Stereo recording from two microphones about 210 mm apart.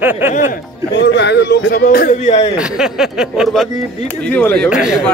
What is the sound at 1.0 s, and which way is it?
Speech, 55° left (ahead or behind).